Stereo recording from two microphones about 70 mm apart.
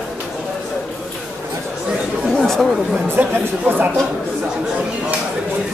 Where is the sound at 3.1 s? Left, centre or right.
Right.